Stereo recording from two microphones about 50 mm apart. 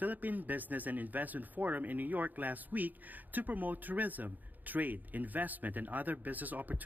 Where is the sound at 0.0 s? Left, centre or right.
Right.